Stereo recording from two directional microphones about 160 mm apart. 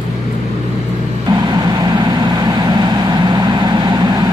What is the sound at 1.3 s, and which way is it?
Vehicle, 25° right (ahead or behind).